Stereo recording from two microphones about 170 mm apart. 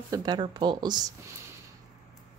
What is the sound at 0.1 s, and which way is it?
Speech, 25° right (ahead or behind).